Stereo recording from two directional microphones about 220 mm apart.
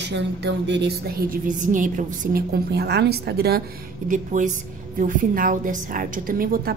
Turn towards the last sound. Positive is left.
turn(degrees=-40)  # may be behind; listen again after turning